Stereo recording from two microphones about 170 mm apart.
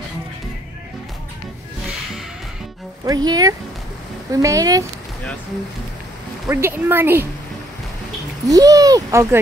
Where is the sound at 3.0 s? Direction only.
25° right (ahead or behind).